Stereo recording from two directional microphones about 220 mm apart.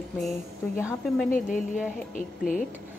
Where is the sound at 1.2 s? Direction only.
40° left (ahead or behind).